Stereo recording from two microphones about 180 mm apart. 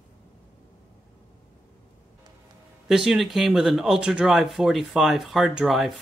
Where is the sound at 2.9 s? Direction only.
Centre (ahead or behind).